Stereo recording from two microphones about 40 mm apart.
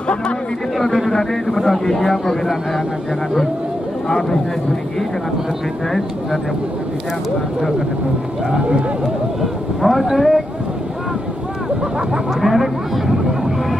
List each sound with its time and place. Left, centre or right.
0.7 s speech: centre
8.5 s speech: right
9.4 s speech: centre
12.4 s a sound: centre